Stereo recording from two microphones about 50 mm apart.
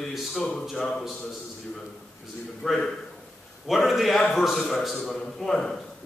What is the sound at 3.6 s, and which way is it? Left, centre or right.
A man's voice, centre.